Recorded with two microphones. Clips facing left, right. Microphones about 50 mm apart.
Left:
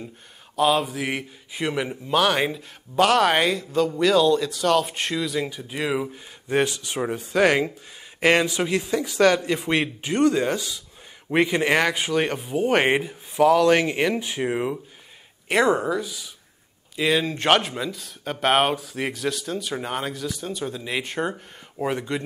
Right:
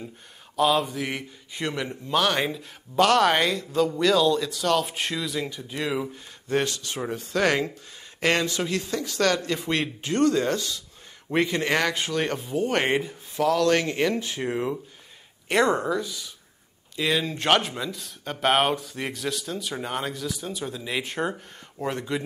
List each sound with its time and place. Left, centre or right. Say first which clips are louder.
0.6 s a man's voice: left 1 dB; centre
5.6 s a man's voice: left 2 dB; centre